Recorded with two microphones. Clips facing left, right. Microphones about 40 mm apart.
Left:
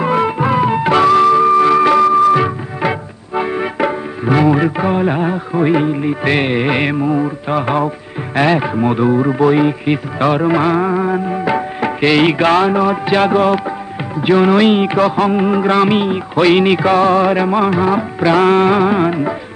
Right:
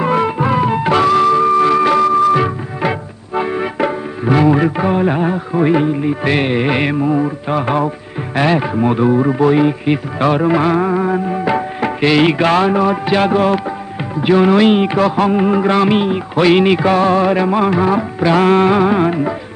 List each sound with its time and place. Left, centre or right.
0.0 s music: centre
0.4 s music: left
4.4 s music: centre
10.2 s music: centre
15.0 s music: centre
15.7 s music: left
18.2 s music: left